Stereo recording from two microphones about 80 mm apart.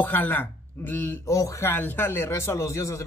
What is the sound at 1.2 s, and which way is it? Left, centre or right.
Speech, left.